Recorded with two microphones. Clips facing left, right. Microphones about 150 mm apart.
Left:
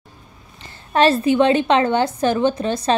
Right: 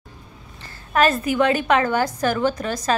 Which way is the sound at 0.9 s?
30° left (ahead or behind).